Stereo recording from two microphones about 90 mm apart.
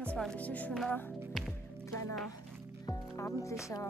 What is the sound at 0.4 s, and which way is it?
Music, 15° left (ahead or behind).